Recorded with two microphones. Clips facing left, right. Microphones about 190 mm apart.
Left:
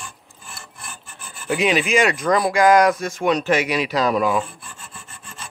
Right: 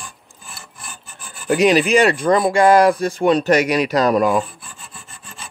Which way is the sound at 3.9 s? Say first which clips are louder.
Right 3 dB; 45° right (ahead or behind).